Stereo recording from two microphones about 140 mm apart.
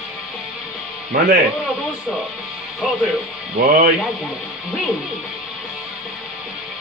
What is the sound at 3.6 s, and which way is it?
Speech, 80° right.